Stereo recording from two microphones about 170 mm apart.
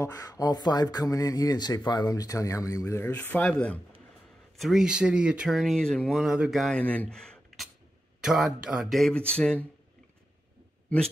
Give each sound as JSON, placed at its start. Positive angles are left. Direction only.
{"t": 0.0, "sound": "speech", "side_deg": 20}
{"t": 4.6, "sound": "speech", "side_deg": 0}